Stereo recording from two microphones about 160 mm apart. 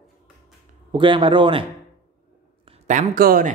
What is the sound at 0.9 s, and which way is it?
Speech, 30° right (ahead or behind).